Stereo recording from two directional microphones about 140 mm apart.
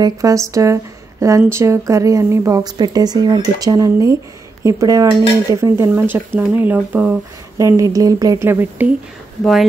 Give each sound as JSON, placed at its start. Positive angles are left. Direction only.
{"t": 0.0, "sound": "speech", "side_deg": -25}
{"t": 7.5, "sound": "speech", "side_deg": -25}
{"t": 9.4, "sound": "speech", "side_deg": 0}